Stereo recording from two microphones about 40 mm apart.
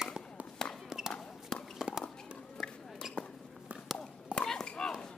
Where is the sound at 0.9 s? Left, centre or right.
Centre.